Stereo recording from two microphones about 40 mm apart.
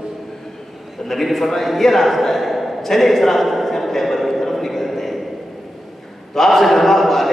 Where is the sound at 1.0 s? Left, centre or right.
Centre.